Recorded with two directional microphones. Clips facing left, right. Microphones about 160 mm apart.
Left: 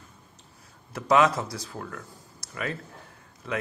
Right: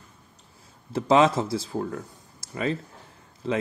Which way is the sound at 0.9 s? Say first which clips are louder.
Right 2 dB; 25° right (ahead or behind).